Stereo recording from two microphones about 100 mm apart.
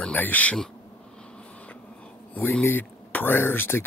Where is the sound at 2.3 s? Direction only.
20° left (ahead or behind).